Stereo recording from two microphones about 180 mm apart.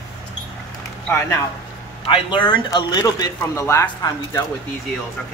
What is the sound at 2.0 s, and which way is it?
Speech, 25° left (ahead or behind).